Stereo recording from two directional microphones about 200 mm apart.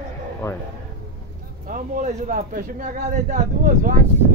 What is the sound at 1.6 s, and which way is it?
A man's voice, 40° right (ahead or behind).